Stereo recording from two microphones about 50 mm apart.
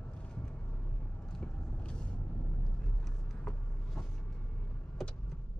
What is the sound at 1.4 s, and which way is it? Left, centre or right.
Vehicle, centre.